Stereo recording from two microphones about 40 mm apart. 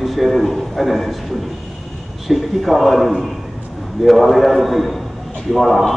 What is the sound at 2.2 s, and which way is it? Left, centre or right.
A man's voice, centre.